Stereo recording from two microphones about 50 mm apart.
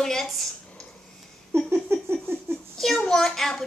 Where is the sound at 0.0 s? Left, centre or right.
Centre.